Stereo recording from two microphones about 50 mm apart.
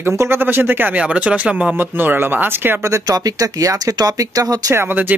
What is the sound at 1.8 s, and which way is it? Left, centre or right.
Speech, right.